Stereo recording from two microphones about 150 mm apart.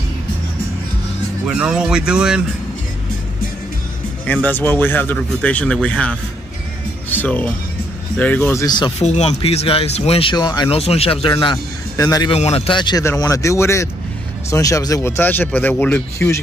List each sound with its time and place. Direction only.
1.5 s speech: 5° right (ahead or behind)
4.3 s speech: 10° left (ahead or behind)
8.6 s speech: 30° left (ahead or behind)
9.0 s speech: 50° left (ahead or behind)
10.3 s speech: 25° left (ahead or behind)
10.7 s speech: 40° left (ahead or behind)
11.5 s a man's voice: 25° left (ahead or behind)
12.3 s speech: 40° left (ahead or behind)
13.2 s speech: 20° left (ahead or behind)